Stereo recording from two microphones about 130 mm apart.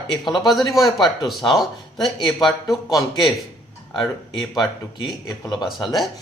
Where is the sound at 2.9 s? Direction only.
30° left (ahead or behind).